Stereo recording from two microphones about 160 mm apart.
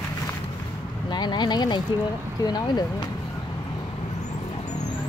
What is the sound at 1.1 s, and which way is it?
Speech, 25° left (ahead or behind).